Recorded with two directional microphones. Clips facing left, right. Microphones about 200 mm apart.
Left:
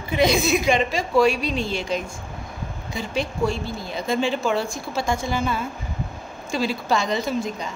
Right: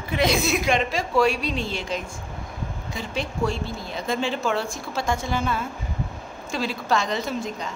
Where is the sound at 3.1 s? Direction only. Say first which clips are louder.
Left 2 dB; 5° left (ahead or behind).